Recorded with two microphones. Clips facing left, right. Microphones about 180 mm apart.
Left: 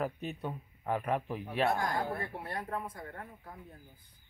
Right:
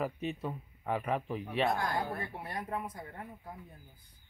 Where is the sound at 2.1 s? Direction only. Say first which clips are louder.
Left 1 dB; 20° right (ahead or behind).